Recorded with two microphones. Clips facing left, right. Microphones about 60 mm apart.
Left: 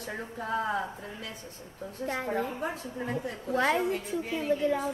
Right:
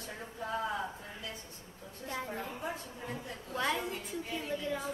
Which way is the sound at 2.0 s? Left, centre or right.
Left.